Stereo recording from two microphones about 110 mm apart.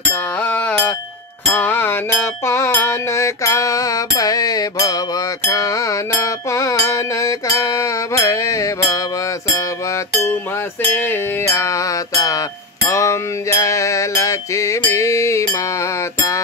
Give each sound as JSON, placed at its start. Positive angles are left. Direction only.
{"t": 0.1, "sound": "a sound", "side_deg": 15}
{"t": 1.4, "sound": "music", "side_deg": 20}
{"t": 10.2, "sound": "music", "side_deg": 20}